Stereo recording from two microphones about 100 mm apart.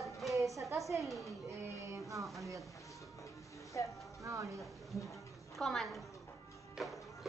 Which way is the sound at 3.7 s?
30° left (ahead or behind).